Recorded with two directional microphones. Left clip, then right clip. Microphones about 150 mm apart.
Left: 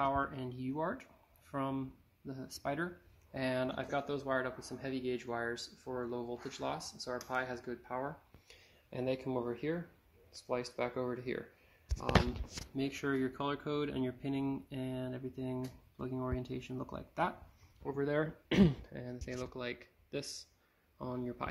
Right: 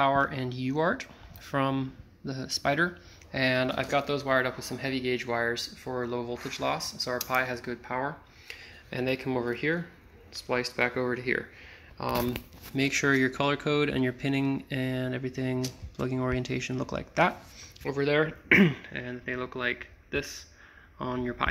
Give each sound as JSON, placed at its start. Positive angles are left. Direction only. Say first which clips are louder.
{"t": 0.0, "sound": "speech", "louder": "right 9 dB", "side_deg": -10}
{"t": 12.0, "sound": "speech", "louder": "right 4 dB", "side_deg": -5}
{"t": 17.8, "sound": "speech", "louder": "right 8 dB", "side_deg": 5}
{"t": 19.0, "sound": "speech", "louder": "right 9 dB", "side_deg": 20}
{"t": 19.4, "sound": "speech", "louder": "right 13 dB", "side_deg": 40}
{"t": 21.2, "sound": "speech", "louder": "right 12 dB", "side_deg": 25}